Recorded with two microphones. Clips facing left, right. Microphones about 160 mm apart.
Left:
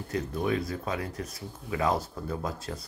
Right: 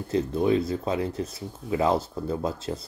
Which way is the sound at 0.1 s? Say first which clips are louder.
Right 6 dB; 25° right (ahead or behind).